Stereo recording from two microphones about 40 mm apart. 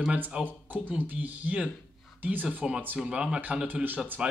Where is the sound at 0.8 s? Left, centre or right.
Right.